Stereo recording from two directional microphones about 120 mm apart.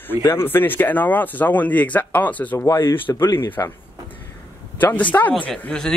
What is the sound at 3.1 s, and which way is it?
Speech, 35° left (ahead or behind).